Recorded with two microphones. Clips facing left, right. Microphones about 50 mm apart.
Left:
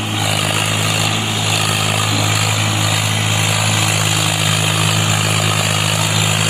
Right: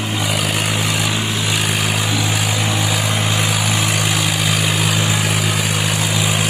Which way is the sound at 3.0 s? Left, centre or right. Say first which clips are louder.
Even; left.